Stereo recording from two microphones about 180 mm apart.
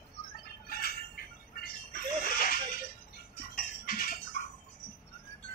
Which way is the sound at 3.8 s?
55° left (ahead or behind).